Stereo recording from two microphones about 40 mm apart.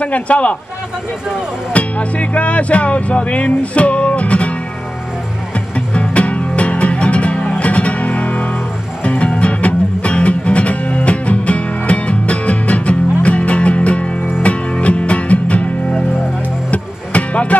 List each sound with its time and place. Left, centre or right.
0.0 s speech: left
1.7 s speech: left
5.9 s music: left
16.7 s music: left